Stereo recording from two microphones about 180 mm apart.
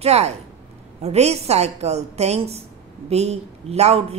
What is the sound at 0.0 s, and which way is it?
Speech, 35° right (ahead or behind).